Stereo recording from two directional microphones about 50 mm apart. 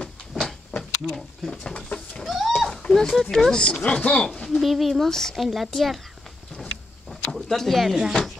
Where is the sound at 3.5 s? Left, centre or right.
Centre.